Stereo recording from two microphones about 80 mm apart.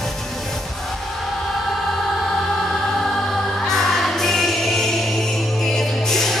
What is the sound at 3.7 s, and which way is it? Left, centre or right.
Music, centre.